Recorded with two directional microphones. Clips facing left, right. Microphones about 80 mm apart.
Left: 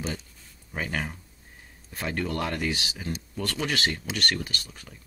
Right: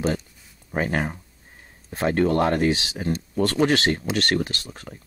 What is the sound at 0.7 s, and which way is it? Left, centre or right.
Speech, right.